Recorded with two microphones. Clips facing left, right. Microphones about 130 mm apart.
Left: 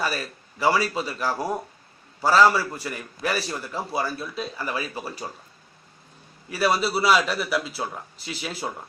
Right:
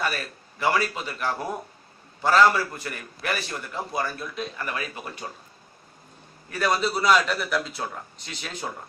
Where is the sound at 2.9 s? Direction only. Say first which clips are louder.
Left 5 dB; 35° left (ahead or behind).